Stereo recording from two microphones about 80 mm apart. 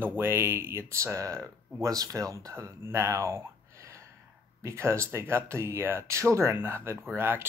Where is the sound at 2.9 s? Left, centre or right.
Right.